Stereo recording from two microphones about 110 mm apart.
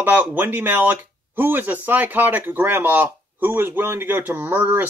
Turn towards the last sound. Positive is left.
turn(degrees=-15)  # may be behind; listen again after turning